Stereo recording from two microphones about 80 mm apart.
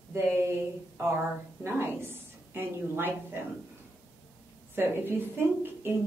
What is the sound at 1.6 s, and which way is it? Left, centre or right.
A woman's voice, right.